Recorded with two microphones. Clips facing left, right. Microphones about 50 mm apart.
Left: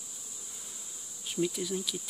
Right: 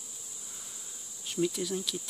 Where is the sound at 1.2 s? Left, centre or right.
Centre.